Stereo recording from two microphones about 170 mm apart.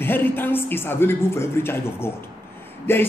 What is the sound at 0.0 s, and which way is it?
A woman's voice, 10° left (ahead or behind).